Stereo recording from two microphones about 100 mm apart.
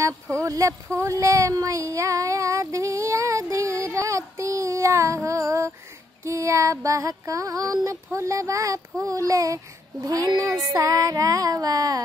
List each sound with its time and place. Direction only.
0.4 s music: 35° right (ahead or behind)
0.9 s child singing: 30° right (ahead or behind)
6.2 s music: 30° right (ahead or behind)